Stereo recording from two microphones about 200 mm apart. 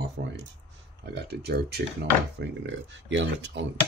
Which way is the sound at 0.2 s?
50° right (ahead or behind).